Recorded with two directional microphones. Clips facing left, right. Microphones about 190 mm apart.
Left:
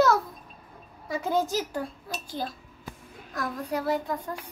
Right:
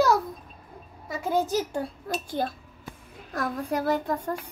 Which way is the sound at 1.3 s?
20° right (ahead or behind).